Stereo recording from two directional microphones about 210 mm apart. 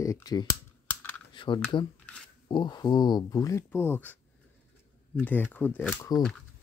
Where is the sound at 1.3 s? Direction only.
20° left (ahead or behind).